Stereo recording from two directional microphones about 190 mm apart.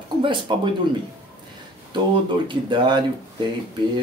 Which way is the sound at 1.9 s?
25° right (ahead or behind).